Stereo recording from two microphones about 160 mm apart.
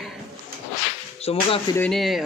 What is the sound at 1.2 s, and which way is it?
Speech, 35° left (ahead or behind).